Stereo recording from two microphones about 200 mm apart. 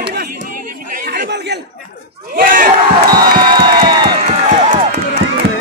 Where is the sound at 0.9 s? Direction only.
50° right (ahead or behind).